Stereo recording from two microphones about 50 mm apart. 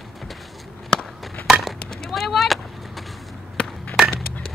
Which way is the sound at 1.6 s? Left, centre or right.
Centre.